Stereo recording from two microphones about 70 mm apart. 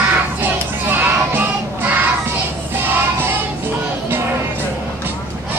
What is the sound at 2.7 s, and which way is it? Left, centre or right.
Music, right.